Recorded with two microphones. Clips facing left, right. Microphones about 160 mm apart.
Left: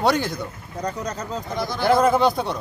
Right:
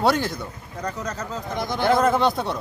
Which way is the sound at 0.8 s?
15° left (ahead or behind).